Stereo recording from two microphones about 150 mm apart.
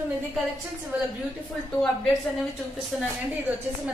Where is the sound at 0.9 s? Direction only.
10° right (ahead or behind).